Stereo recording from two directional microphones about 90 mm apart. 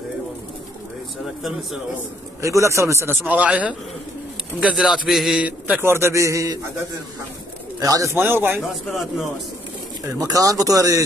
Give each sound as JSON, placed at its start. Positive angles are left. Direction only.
{"t": 2.4, "sound": "a man's voice", "side_deg": -35}
{"t": 3.3, "sound": "a man's voice", "side_deg": -15}
{"t": 5.3, "sound": "a man's voice", "side_deg": -15}
{"t": 5.9, "sound": "a man's voice", "side_deg": -30}
{"t": 8.2, "sound": "a man's voice", "side_deg": -25}
{"t": 8.5, "sound": "a man's voice", "side_deg": 0}
{"t": 10.0, "sound": "a man's voice", "side_deg": -40}